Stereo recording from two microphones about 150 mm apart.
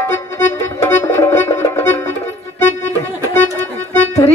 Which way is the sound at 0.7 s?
20° left (ahead or behind).